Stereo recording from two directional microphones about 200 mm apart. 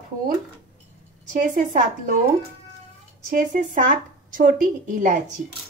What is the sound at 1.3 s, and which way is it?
Speech, 40° right (ahead or behind).